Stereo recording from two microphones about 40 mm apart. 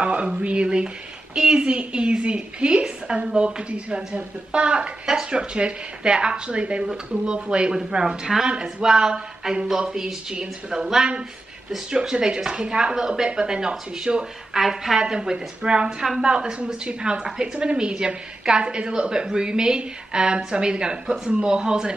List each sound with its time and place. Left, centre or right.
0.0 s a woman's voice: right
7.7 s speech: centre
8.5 s a woman's voice: right
14.6 s speech: centre
15.0 s a woman's voice: centre